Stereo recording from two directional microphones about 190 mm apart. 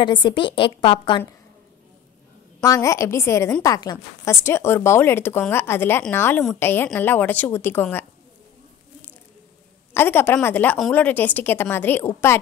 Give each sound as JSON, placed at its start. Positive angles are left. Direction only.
{"t": 0.0, "sound": "a woman's voice", "side_deg": 25}
{"t": 2.6, "sound": "a woman's voice", "side_deg": 15}
{"t": 9.9, "sound": "a woman's voice", "side_deg": 10}